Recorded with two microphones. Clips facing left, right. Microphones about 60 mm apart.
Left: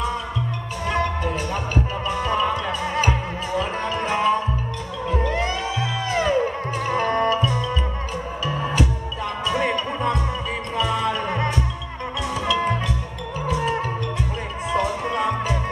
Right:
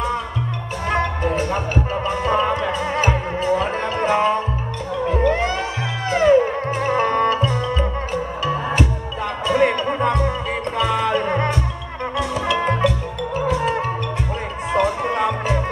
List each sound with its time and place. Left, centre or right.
0.8 s music: right